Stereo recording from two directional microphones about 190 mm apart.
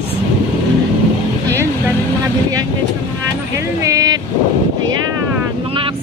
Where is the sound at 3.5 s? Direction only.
15° right (ahead or behind).